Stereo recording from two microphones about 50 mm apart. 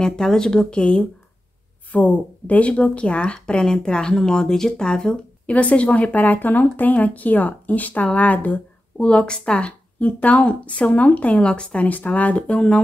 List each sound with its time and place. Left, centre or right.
0.0 s speech: centre
1.9 s speech: left; by 5.2 s centre
5.5 s speech: left
8.9 s speech: centre